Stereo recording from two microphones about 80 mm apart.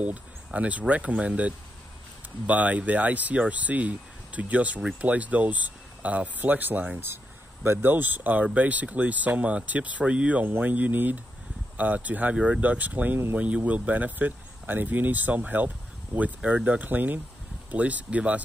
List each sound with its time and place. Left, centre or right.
0.0 s speech: centre